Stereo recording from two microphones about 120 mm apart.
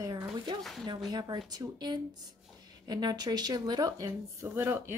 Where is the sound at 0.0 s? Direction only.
30° right (ahead or behind).